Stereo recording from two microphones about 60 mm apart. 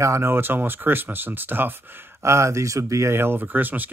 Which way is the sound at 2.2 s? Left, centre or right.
Right.